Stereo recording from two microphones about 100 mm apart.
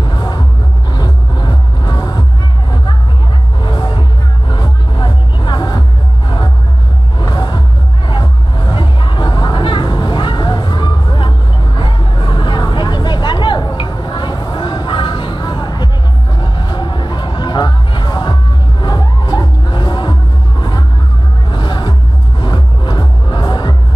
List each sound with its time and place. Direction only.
0.0 s music: 45° left (ahead or behind)
3.6 s music: 50° left (ahead or behind)
7.2 s music: 45° left (ahead or behind)
21.5 s music: 50° left (ahead or behind)